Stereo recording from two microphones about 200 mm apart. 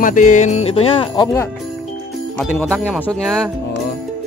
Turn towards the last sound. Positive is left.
turn(degrees=0)  # may be behind; listen again after turning